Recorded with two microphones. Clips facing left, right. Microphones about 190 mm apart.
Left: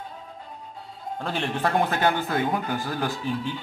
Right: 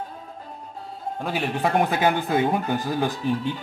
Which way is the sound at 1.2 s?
10° right (ahead or behind).